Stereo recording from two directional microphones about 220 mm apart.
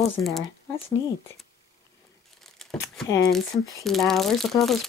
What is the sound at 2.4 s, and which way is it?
Crumpling, centre (ahead or behind).